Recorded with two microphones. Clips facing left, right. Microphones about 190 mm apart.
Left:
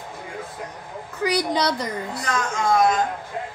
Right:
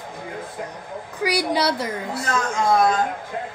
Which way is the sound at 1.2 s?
10° right (ahead or behind).